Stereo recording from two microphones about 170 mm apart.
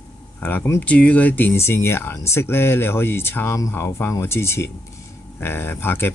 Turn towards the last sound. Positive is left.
turn(degrees=15)  # may be behind; listen again after turning